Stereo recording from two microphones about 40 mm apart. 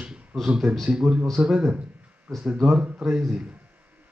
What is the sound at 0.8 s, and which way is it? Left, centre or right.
Speech, centre.